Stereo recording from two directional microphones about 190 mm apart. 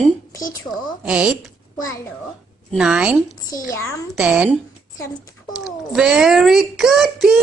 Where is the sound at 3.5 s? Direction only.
20° left (ahead or behind).